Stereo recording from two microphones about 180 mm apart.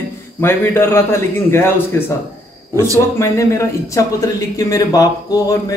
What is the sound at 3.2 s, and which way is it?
A man's voice, 15° left (ahead or behind).